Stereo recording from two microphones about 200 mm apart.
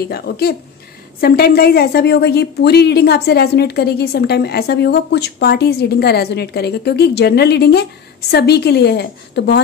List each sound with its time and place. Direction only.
0.1 s a woman's voice: 50° left (ahead or behind)